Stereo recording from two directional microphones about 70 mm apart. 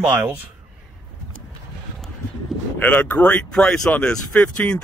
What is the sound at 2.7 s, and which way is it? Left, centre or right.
Speech, left.